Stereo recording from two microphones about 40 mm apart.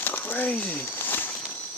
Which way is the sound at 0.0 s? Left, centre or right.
Left.